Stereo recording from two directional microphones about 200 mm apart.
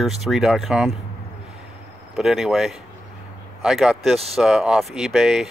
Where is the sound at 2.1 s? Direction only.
Centre (ahead or behind).